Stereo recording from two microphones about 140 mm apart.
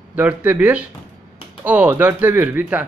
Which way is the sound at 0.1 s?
15° right (ahead or behind).